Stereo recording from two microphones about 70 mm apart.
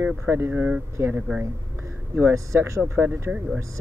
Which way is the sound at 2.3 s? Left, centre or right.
Right.